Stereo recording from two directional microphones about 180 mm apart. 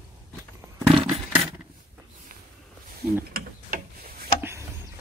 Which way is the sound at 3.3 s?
55° right (ahead or behind).